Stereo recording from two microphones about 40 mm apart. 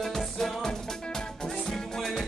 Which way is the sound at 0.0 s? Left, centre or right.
Centre.